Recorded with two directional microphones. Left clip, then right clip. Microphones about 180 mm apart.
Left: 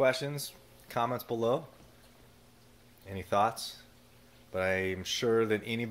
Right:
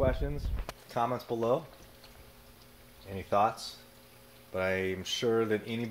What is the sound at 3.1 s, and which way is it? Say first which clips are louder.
Speech: right 1 dB; centre (ahead or behind).